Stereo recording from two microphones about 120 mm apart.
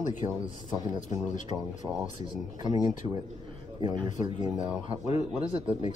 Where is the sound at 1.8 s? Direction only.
10° right (ahead or behind).